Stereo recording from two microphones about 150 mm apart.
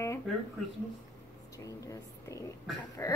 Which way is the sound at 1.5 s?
20° left (ahead or behind).